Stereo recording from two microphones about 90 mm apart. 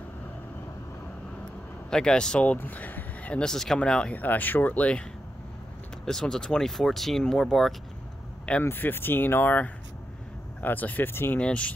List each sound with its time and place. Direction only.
1.9 s speech: 10° left (ahead or behind)
6.0 s speech: 5° left (ahead or behind)
8.6 s speech: 25° left (ahead or behind)